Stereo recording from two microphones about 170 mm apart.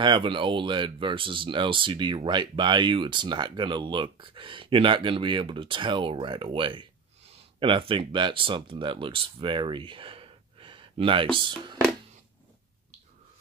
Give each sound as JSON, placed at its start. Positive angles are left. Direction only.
{"t": 0.0, "sound": "speech", "side_deg": -30}